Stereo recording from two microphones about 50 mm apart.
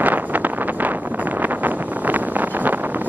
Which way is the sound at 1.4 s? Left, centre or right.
Right.